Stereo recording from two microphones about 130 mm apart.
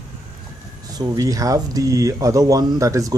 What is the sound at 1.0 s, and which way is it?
Speech, 25° right (ahead or behind).